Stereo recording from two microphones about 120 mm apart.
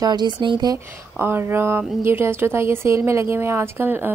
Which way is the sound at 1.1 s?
20° right (ahead or behind).